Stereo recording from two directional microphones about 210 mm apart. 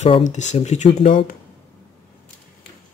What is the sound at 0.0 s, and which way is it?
Speech, 35° left (ahead or behind).